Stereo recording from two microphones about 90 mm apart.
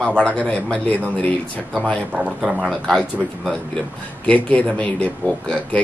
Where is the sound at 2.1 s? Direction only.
20° right (ahead or behind).